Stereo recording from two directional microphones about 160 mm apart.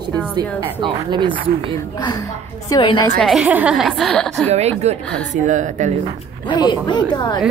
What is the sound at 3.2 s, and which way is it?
A woman's voice, centre (ahead or behind).